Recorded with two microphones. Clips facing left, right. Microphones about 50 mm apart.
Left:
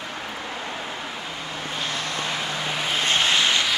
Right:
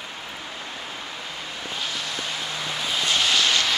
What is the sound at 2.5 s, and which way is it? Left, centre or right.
Vehicle, left.